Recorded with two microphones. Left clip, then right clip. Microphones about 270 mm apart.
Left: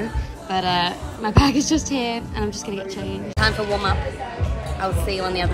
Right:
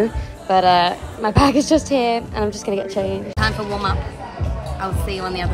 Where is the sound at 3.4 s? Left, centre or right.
Centre.